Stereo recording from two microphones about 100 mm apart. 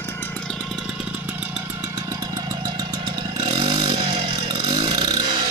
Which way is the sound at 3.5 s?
60° right (ahead or behind).